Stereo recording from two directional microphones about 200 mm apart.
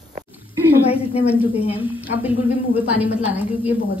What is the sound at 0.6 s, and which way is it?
A woman's voice, 5° right (ahead or behind).